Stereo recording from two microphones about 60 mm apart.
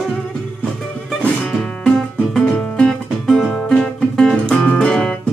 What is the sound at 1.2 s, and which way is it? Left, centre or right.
Music, centre.